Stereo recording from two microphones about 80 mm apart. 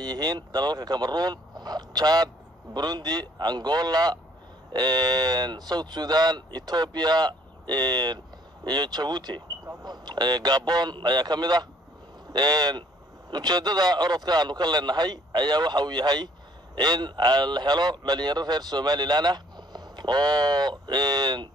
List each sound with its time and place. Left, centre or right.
0.0 s a man's voice: right